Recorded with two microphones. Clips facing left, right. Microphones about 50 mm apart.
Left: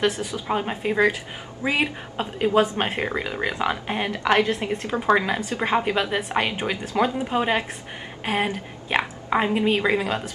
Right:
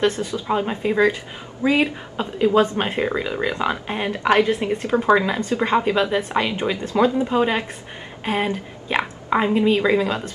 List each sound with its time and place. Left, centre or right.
0.0 s speech: centre
2.3 s a woman's voice: left
2.6 s a woman's voice: centre
5.1 s a woman's voice: centre